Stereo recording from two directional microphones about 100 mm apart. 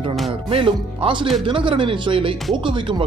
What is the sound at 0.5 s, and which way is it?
Speech, 65° right (ahead or behind).